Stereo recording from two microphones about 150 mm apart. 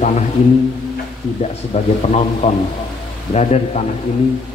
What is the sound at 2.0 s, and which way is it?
Speech, 45° left (ahead or behind).